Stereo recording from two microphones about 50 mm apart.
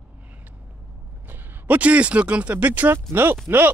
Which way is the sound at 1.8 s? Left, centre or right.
Right.